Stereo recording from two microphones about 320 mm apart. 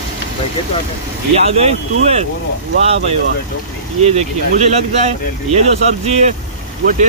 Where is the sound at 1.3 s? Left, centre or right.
Centre.